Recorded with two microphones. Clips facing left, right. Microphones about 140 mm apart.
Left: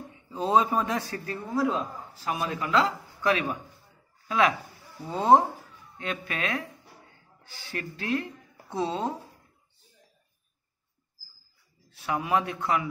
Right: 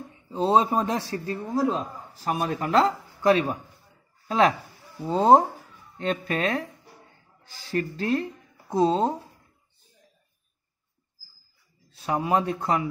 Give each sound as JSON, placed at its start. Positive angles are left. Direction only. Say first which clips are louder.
{"t": 0.3, "sound": "a man's voice", "louder": "right 2 dB", "side_deg": -30}
{"t": 12.0, "sound": "a man's voice", "louder": "right 3 dB", "side_deg": -30}